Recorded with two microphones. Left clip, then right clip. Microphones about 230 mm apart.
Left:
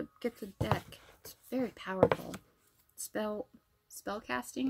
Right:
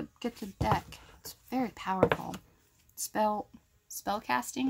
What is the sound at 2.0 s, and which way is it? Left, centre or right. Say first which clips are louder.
Speech: even; left.